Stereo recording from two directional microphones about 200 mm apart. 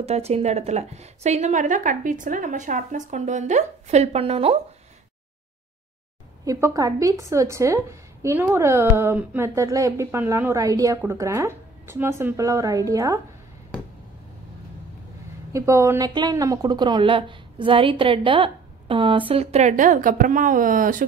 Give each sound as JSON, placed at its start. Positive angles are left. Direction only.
{"t": 0.0, "sound": "a woman's voice", "side_deg": -30}
{"t": 6.4, "sound": "a woman's voice", "side_deg": -15}
{"t": 15.5, "sound": "speech", "side_deg": -15}